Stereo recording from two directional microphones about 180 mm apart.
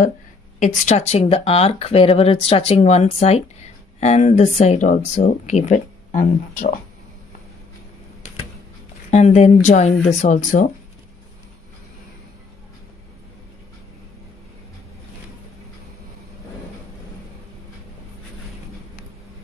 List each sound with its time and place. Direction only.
0.6 s speech: 40° left (ahead or behind)
9.1 s speech: 40° left (ahead or behind)